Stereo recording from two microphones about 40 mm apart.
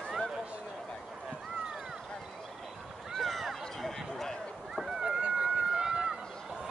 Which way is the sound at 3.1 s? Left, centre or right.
Centre.